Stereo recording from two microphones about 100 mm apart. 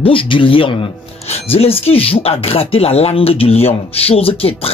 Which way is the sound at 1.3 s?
80° left.